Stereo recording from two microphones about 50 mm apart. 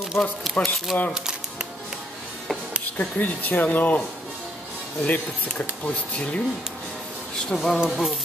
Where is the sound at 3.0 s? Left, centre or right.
Left.